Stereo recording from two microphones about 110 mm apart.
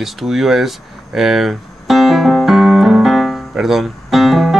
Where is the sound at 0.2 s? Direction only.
Centre (ahead or behind).